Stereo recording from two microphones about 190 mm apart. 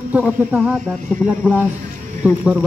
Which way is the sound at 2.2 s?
5° right (ahead or behind).